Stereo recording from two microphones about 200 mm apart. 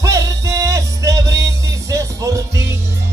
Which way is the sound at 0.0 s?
15° right (ahead or behind).